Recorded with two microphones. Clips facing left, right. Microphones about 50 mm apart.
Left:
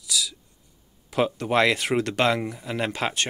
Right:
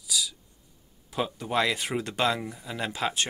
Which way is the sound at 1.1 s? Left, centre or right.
Left.